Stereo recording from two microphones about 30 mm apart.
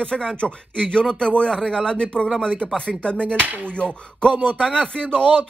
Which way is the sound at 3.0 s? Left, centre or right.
Left.